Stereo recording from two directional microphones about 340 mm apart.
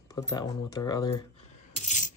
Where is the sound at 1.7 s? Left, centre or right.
Left.